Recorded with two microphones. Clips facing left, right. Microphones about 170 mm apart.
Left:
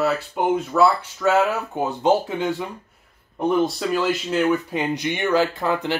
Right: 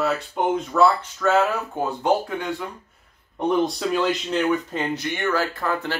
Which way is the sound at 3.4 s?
Centre (ahead or behind).